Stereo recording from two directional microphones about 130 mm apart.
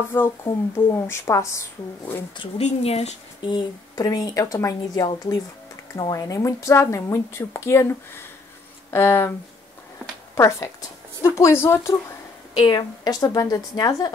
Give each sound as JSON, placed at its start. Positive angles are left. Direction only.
{"t": 0.1, "sound": "speech", "side_deg": 15}
{"t": 2.6, "sound": "a woman's voice", "side_deg": 55}
{"t": 3.4, "sound": "speech", "side_deg": 30}
{"t": 8.9, "sound": "speech", "side_deg": 20}
{"t": 10.3, "sound": "speech", "side_deg": 25}
{"t": 12.5, "sound": "speech", "side_deg": 30}